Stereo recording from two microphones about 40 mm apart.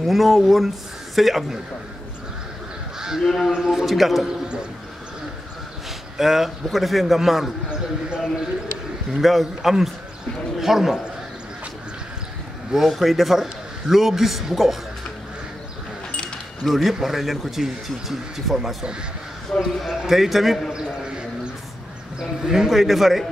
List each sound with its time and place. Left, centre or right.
0.0 s speech: centre
3.2 s speech: centre
3.5 s speech: centre
6.1 s speech: centre
9.1 s speech: centre
12.7 s speech: centre
16.6 s speech: centre
19.5 s speech: left
19.9 s speech: centre
22.2 s speech: centre
22.7 s speech: centre